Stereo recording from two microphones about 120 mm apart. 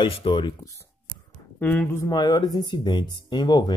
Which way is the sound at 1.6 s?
15° left (ahead or behind).